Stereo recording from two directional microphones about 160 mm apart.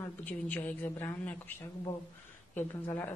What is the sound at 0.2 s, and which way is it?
Speech, 10° left (ahead or behind).